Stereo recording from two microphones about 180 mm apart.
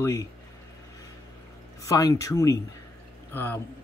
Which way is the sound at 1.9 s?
20° left (ahead or behind).